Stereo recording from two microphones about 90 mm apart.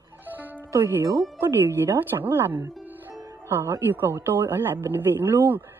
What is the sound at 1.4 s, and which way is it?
Speech, 25° right (ahead or behind).